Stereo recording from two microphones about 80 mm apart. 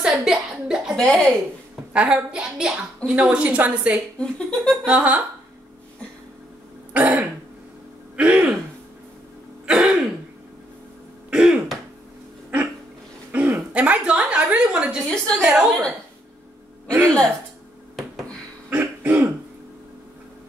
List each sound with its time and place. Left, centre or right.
0.0 s a sound: centre
0.9 s speech: centre
2.0 s a woman's voice: centre
4.2 s speech: centre
4.8 s a woman's voice: centre
6.9 s throat clearing: centre
8.2 s a woman's voice: centre
9.7 s throat clearing: centre
11.2 s throat clearing: centre
13.3 s a sound: centre
15.0 s a sound: centre
15.4 s a sound: centre
16.9 s music: right
18.7 s throat clearing: right